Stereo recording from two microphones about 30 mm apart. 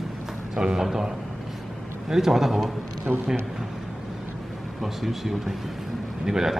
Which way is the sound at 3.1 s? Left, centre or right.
Right.